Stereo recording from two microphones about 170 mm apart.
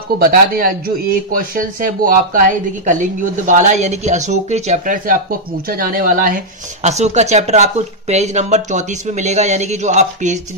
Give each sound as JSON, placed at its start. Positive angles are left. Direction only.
{"t": 0.2, "sound": "speech", "side_deg": -60}